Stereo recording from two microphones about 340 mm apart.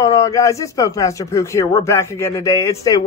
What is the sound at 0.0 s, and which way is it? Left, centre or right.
Speech, centre.